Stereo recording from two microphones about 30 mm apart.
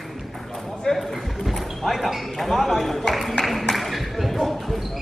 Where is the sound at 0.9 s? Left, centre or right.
Centre.